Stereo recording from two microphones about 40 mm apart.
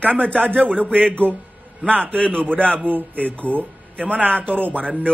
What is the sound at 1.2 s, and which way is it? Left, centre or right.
Speech, right.